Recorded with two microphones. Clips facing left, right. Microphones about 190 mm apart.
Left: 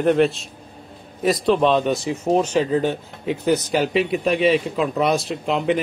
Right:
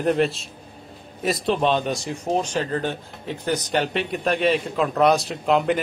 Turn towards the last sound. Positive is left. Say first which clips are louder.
# even
turn(degrees=0)  # may be behind; listen again after turning